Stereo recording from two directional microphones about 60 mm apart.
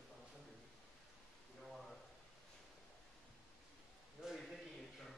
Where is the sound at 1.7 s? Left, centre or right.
Centre.